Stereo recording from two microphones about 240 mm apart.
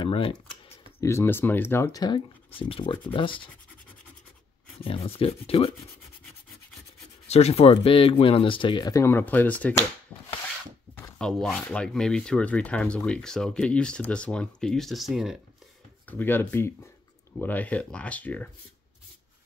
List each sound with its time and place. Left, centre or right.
0.0 s speech: left
4.7 s speech: left
7.2 s speech: left; by 9.8 s centre
11.0 s speech: centre